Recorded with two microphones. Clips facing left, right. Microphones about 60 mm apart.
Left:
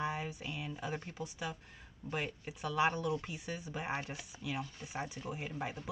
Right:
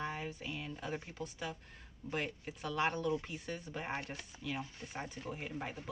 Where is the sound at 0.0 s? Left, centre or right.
Centre.